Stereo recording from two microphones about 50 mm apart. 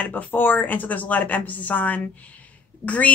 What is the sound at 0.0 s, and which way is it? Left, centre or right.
A woman's voice, left.